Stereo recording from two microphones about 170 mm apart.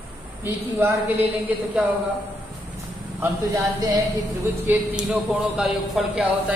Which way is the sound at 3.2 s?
20° right (ahead or behind).